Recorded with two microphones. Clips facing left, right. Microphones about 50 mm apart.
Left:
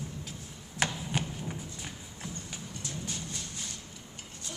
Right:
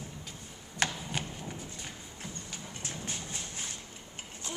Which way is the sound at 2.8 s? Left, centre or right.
Right.